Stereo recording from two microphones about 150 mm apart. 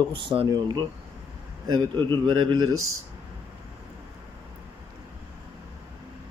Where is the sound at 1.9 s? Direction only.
30° right (ahead or behind).